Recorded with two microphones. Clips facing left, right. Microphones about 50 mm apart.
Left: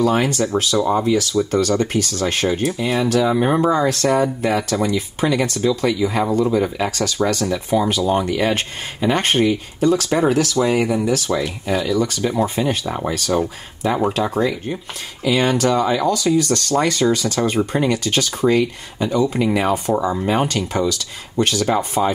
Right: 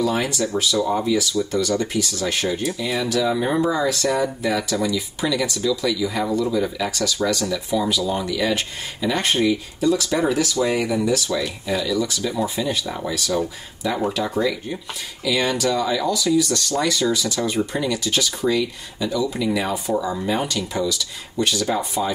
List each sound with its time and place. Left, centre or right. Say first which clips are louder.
0.0 s speech: left 4 dB; left
1.1 s speech: left 3 dB; left
12.8 s speech: left 4 dB; left
14.2 s speech: left 3 dB; left